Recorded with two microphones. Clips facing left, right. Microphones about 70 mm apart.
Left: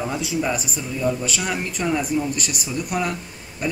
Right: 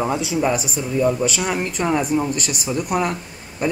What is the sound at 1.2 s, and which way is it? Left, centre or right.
Speech, centre.